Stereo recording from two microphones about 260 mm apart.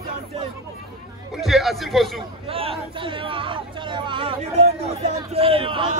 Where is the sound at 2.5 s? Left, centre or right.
Right.